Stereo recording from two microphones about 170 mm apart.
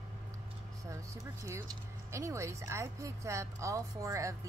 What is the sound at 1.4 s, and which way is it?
Speech, 15° right (ahead or behind).